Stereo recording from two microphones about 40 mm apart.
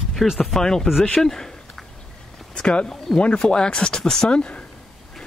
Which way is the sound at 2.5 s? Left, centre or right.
Left.